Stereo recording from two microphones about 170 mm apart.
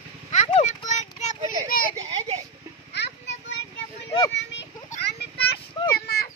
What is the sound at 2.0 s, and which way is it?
Children playing, 35° right (ahead or behind).